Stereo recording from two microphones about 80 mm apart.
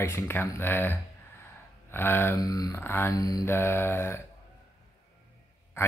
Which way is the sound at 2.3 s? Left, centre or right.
Left.